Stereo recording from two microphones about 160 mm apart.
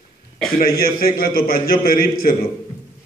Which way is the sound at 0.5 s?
70° left (ahead or behind).